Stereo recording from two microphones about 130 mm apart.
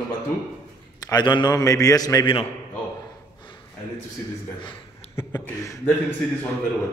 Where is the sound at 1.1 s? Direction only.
35° left (ahead or behind).